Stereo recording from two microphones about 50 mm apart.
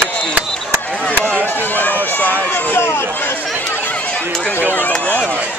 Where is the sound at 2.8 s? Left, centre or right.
Left.